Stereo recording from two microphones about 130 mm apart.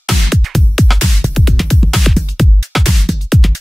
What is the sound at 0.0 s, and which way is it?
Music, centre (ahead or behind).